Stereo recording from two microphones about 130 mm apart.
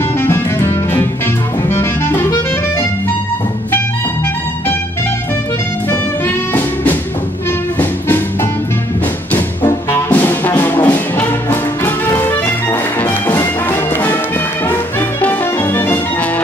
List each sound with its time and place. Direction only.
0.2 s music: 20° left (ahead or behind)
5.9 s music: 15° left (ahead or behind)
9.7 s music: 20° left (ahead or behind)